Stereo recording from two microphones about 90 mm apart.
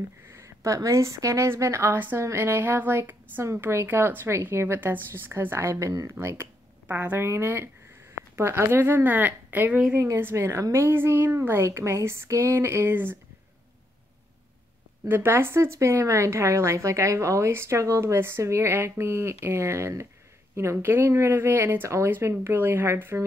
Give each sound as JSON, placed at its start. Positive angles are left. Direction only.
{"t": 0.3, "sound": "a woman's voice", "side_deg": -30}
{"t": 9.9, "sound": "a woman's voice", "side_deg": -30}
{"t": 15.0, "sound": "a woman's voice", "side_deg": -25}